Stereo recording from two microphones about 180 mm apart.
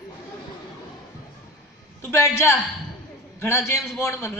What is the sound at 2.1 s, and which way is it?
A man's voice, 15° left (ahead or behind).